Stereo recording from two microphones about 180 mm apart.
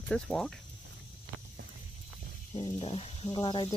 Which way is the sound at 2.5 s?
30° left (ahead or behind).